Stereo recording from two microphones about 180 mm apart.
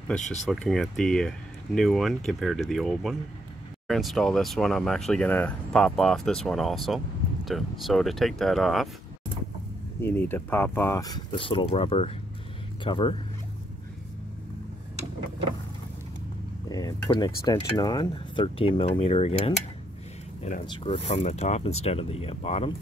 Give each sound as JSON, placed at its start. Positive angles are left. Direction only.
{"t": 0.5, "sound": "speech", "side_deg": 0}
{"t": 10.0, "sound": "speech", "side_deg": 10}
{"t": 16.6, "sound": "speech", "side_deg": 20}
{"t": 20.6, "sound": "speech", "side_deg": 30}